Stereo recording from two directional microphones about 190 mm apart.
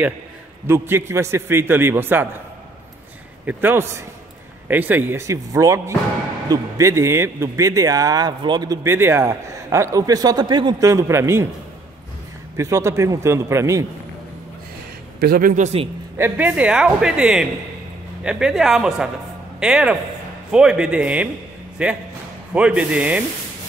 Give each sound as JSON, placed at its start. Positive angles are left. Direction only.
{"t": 0.7, "sound": "speech", "side_deg": -15}
{"t": 3.4, "sound": "speech", "side_deg": -10}
{"t": 12.5, "sound": "speech", "side_deg": -15}
{"t": 15.1, "sound": "a man's voice", "side_deg": -50}
{"t": 16.2, "sound": "speech", "side_deg": -10}